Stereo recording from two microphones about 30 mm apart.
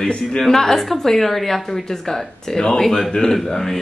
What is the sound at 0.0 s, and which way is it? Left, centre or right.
Speech, left.